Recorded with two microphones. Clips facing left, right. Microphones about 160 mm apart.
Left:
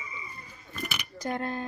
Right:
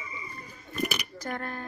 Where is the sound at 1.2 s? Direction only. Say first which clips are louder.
Left 7 dB; 20° left (ahead or behind).